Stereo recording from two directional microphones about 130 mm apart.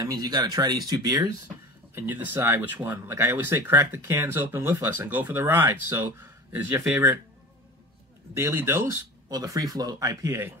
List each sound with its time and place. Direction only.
0.0 s speech: 30° right (ahead or behind)
2.0 s speech: 15° right (ahead or behind)
8.4 s speech: 20° right (ahead or behind)
9.3 s speech: 30° right (ahead or behind)